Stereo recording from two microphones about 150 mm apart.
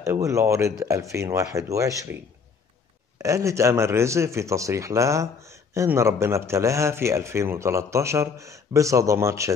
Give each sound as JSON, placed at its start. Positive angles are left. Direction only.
{"t": 0.0, "sound": "speech", "side_deg": -20}
{"t": 3.2, "sound": "speech", "side_deg": -20}